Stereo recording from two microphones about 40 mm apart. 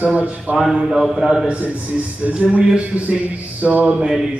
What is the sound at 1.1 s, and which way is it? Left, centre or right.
Speech, centre.